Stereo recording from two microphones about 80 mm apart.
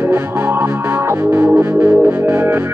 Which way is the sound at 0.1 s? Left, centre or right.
Right.